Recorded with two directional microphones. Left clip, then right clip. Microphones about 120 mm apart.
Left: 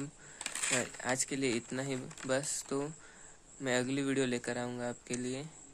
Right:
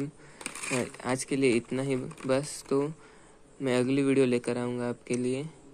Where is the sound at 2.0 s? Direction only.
15° left (ahead or behind).